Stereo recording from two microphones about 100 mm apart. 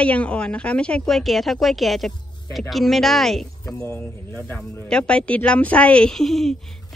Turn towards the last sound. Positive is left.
turn(degrees=5)  # may be behind; listen again after turning